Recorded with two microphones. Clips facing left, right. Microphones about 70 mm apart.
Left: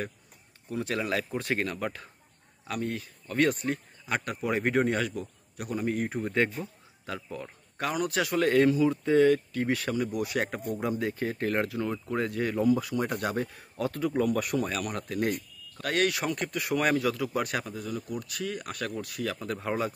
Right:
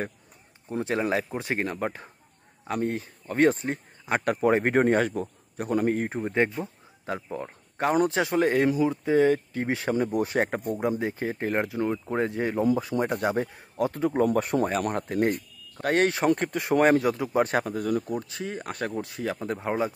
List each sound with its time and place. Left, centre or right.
0.7 s speech: right
4.2 s a man's voice: right
5.9 s a man's voice: right
10.8 s speech: right
17.6 s speech: right
18.0 s speech: right